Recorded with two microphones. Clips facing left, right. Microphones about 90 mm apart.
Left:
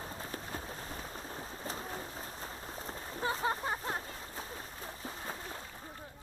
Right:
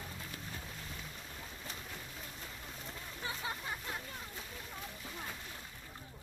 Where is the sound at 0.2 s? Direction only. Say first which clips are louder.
Left 5 dB; 35° left (ahead or behind).